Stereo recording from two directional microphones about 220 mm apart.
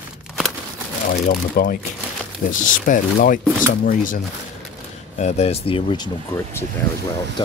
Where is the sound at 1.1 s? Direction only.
40° left (ahead or behind).